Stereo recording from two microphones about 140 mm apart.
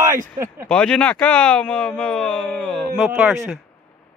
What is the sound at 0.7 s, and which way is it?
Speech, 5° left (ahead or behind).